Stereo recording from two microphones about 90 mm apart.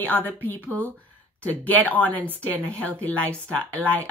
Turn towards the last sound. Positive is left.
turn(degrees=15)  # may be behind; listen again after turning